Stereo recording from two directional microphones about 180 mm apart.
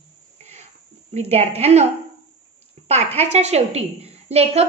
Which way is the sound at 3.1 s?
35° right (ahead or behind).